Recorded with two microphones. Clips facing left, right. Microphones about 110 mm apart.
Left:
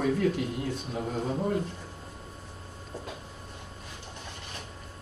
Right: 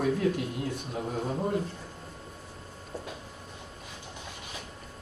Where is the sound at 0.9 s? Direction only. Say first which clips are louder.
Left 1 dB; 5° right (ahead or behind).